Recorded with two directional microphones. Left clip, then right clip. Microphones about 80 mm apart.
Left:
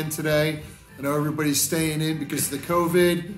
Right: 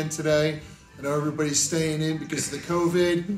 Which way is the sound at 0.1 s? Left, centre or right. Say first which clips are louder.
Even; left.